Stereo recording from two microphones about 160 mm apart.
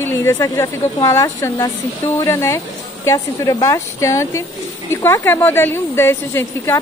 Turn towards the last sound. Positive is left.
turn(degrees=15)  # may be behind; listen again after turning